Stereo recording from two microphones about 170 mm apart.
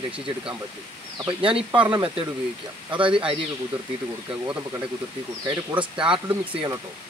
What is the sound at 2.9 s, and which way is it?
Speech, 30° right (ahead or behind).